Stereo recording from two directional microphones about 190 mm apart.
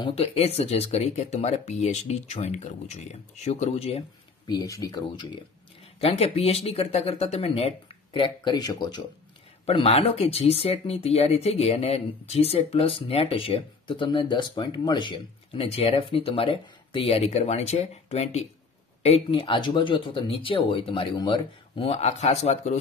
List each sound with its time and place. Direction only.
0.0 s speech: 30° left (ahead or behind)
4.5 s speech: 20° left (ahead or behind)
9.7 s speech: 30° left (ahead or behind)